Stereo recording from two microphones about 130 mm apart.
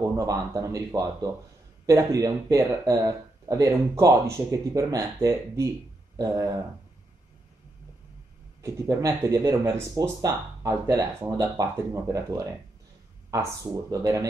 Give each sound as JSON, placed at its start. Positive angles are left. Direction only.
{"t": 0.2, "sound": "speech", "side_deg": -25}
{"t": 8.6, "sound": "speech", "side_deg": -25}
{"t": 13.3, "sound": "speech", "side_deg": -25}